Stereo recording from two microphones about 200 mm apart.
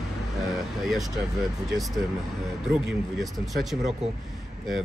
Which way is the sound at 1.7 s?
Centre (ahead or behind).